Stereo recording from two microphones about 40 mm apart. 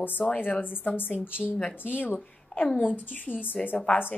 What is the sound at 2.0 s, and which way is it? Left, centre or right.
A woman's voice, left.